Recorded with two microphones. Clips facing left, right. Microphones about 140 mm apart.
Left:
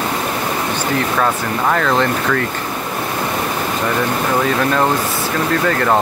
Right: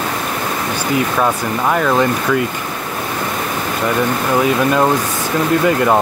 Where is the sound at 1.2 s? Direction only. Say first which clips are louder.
Right 1 dB; 10° right (ahead or behind).